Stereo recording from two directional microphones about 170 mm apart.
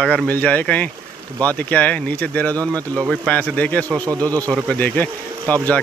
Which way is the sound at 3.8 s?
20° right (ahead or behind).